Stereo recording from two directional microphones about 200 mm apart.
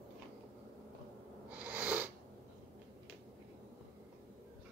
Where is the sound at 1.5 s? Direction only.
10° right (ahead or behind).